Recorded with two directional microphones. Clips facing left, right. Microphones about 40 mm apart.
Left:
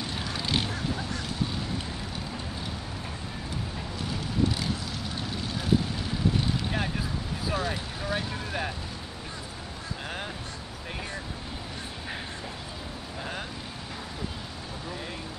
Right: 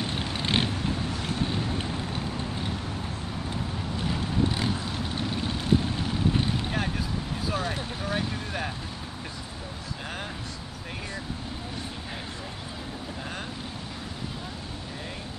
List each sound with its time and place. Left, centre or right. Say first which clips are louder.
0.0 s vehicle: right 2 dB; right
4.1 s vehicle: even; right
7.4 s vehicle: left 1 dB; centre